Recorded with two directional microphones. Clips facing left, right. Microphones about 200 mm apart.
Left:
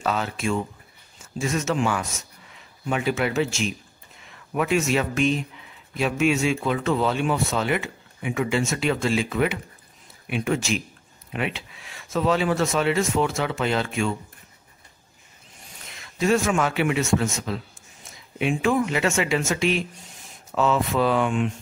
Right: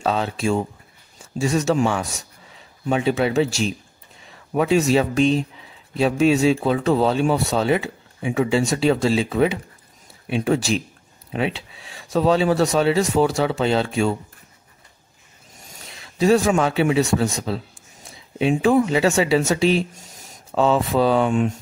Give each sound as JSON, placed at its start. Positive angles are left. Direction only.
{"t": 0.0, "sound": "speech", "side_deg": -30}
{"t": 15.5, "sound": "a sound", "side_deg": -40}
{"t": 16.0, "sound": "a woman's voice", "side_deg": -35}